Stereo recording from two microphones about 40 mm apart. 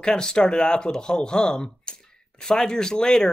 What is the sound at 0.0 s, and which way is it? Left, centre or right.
Speech, left.